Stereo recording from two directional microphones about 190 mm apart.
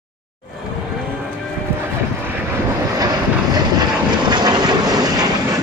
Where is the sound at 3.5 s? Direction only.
20° right (ahead or behind).